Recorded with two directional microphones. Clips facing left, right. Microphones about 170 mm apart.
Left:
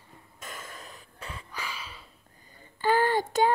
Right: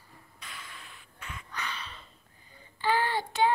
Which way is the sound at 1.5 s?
5° left (ahead or behind).